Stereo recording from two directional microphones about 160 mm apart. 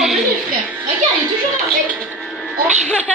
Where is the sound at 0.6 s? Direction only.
10° right (ahead or behind).